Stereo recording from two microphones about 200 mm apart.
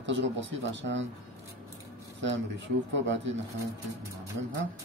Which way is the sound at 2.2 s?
65° right (ahead or behind).